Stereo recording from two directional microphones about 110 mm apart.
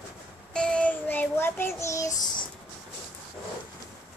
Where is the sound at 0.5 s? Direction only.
10° left (ahead or behind); by 2.1 s 30° left (ahead or behind).